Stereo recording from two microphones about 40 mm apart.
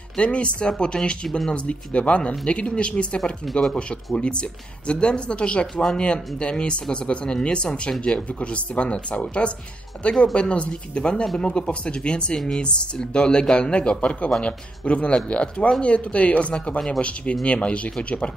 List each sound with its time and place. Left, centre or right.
0.2 s speech: left
3.4 s speech: centre
4.2 s speech: left